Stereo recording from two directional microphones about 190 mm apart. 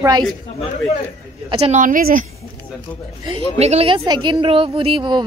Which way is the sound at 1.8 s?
45° right (ahead or behind).